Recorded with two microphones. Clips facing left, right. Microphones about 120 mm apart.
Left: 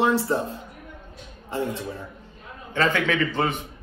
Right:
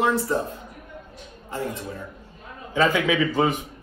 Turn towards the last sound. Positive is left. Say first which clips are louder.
# right 3 dB
turn(degrees=-5)  # may be behind; listen again after turning